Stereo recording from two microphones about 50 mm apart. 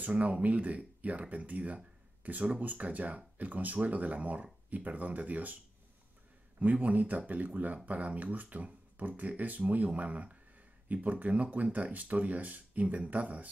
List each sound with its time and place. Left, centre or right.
0.0 s speech: right
6.6 s speech: right